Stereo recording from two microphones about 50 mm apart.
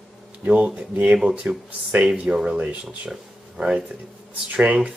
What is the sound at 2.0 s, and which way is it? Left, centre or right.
Speech, right.